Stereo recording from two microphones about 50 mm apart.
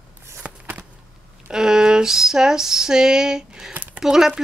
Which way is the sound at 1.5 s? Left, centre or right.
Centre.